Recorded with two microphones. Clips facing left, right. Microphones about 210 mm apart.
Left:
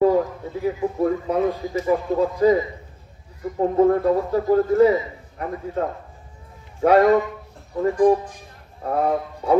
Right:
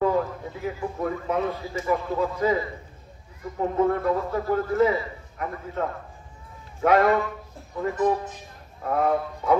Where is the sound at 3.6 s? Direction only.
35° left (ahead or behind).